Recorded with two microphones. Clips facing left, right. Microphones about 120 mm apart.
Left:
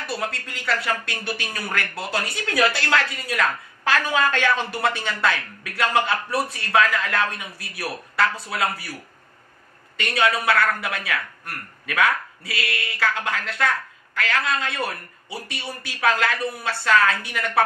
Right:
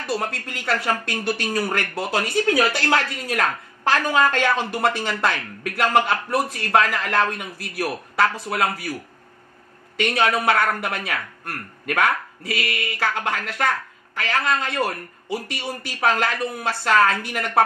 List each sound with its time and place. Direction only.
0.0 s speech: 45° right (ahead or behind)
10.1 s speech: 45° right (ahead or behind)